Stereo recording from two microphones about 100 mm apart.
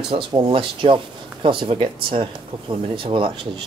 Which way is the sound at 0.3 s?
55° right (ahead or behind).